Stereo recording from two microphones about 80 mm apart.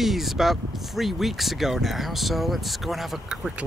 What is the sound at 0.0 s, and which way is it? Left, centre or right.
Speech, centre.